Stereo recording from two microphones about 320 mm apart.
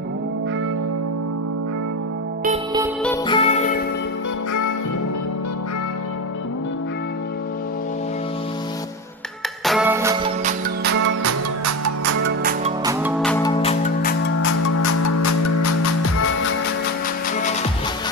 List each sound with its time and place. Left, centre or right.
2.4 s music: centre
3.3 s music: centre
9.7 s music: centre
10.4 s music: right
11.2 s music: right
12.1 s music: right
13.0 s music: centre
14.8 s music: left